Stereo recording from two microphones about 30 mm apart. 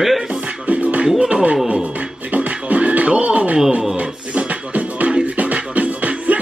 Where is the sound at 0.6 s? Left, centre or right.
Right.